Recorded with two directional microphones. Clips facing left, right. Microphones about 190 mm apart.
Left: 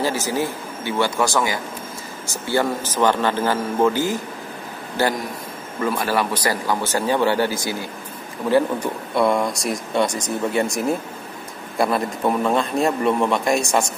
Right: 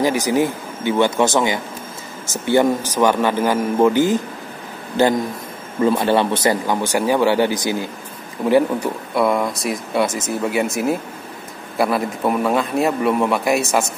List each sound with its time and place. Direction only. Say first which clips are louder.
0.0 s a man's voice: right 5 dB; 15° right (ahead or behind)
5.8 s a man's voice: right 6 dB; 25° right (ahead or behind); by 13.8 s 5° right (ahead or behind)